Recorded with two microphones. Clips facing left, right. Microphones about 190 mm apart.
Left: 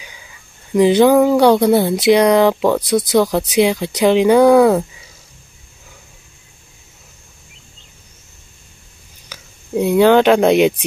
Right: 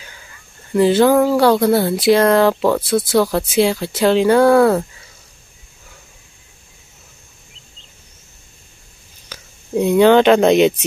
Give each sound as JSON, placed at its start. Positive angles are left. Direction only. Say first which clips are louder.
{"t": 0.7, "sound": "speech", "louder": "left 2 dB", "side_deg": 15}
{"t": 9.3, "sound": "speech", "louder": "even", "side_deg": 5}